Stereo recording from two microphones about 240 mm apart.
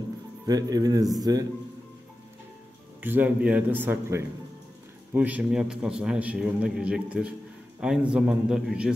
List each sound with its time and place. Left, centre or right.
0.5 s a man's voice: centre
3.0 s a man's voice: centre